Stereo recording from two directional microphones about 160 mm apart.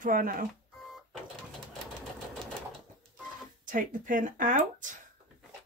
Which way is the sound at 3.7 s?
55° right (ahead or behind).